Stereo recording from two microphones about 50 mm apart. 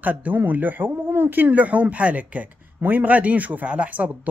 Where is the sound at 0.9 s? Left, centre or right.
Right.